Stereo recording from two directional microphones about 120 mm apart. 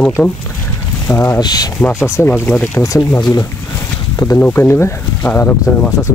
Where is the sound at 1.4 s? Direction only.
35° left (ahead or behind).